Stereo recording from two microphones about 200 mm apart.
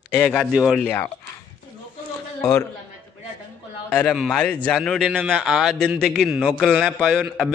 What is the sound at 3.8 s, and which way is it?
A man's voice, 5° left (ahead or behind).